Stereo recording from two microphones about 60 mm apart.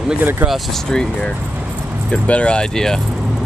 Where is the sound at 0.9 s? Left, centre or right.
Centre.